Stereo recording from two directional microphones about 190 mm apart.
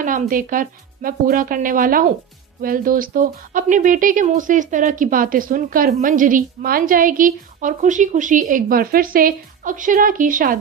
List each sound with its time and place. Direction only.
0.0 s speech: 45° right (ahead or behind)